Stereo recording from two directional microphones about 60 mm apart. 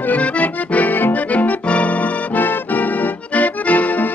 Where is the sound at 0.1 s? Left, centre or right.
Left.